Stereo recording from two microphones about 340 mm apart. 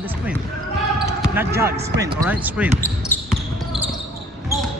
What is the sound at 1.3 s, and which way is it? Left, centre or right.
Speech, centre.